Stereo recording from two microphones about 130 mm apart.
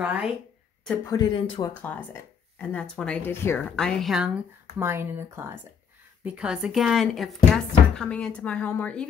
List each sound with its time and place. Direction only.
0.0 s a woman's voice: 10° right (ahead or behind)
1.1 s speech: 35° left (ahead or behind)
1.7 s speech: 15° left (ahead or behind)
4.7 s speech: 20° right (ahead or behind)
6.2 s speech: 10° right (ahead or behind); by 9.0 s 10° left (ahead or behind)